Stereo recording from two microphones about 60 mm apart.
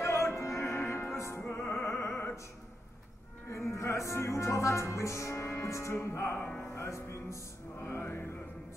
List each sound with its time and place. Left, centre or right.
0.0 s music: left
1.4 s music: left
3.4 s music: left